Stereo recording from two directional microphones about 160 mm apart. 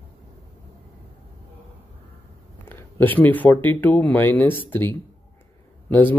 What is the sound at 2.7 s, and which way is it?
Speech, 10° left (ahead or behind).